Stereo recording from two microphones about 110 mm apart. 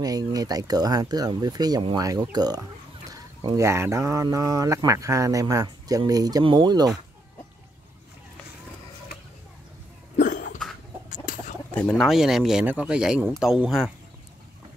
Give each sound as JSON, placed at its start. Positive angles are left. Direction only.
{"t": 0.0, "sound": "speech", "side_deg": -35}
{"t": 11.7, "sound": "a man's voice", "side_deg": 5}